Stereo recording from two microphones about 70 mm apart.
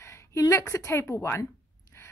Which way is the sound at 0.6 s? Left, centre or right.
Left.